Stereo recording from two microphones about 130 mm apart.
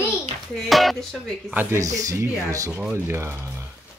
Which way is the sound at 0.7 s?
Centre (ahead or behind).